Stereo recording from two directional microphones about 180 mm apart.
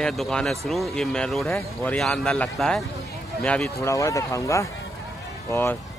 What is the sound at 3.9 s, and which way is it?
A man's voice, 15° left (ahead or behind).